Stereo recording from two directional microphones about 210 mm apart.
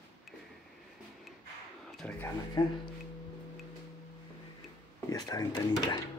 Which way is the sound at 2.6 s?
15° left (ahead or behind).